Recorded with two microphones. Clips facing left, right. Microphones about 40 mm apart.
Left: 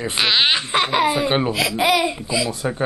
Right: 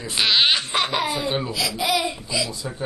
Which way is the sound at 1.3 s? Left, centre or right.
Left.